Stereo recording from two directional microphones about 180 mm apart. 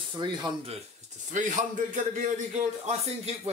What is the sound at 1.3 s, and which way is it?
Speech, 45° right (ahead or behind).